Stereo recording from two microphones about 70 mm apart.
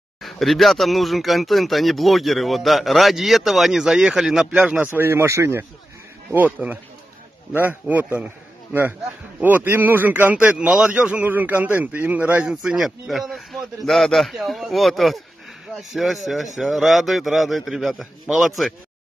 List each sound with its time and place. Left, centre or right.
0.2 s speech: centre
4.9 s speech: right
6.3 s a man's voice: right
7.9 s a man's voice: right
9.4 s a man's voice: right
10.6 s a man's voice: centre
12.4 s speech: centre